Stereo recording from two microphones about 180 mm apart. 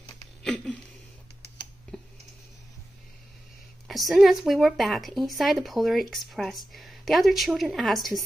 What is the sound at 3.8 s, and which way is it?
A woman's voice, centre (ahead or behind).